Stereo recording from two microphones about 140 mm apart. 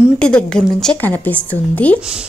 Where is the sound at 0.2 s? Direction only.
5° left (ahead or behind).